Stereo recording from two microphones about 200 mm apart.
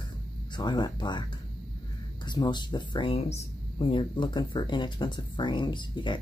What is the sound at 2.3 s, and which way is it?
Speech, 20° left (ahead or behind).